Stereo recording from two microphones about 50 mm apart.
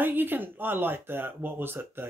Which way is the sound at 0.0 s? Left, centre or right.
Right.